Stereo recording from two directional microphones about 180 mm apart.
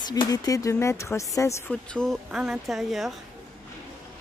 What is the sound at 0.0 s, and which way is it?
A woman's voice, 20° left (ahead or behind).